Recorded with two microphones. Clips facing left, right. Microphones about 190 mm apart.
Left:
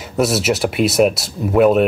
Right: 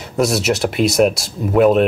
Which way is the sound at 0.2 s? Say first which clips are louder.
Even; centre (ahead or behind).